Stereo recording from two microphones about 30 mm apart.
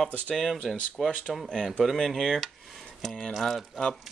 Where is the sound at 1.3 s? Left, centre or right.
Centre.